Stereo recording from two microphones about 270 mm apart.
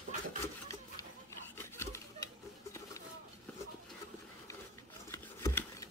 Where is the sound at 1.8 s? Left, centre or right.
Centre.